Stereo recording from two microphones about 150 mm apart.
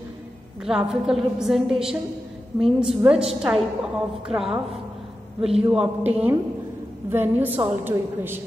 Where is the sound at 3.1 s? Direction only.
40° right (ahead or behind).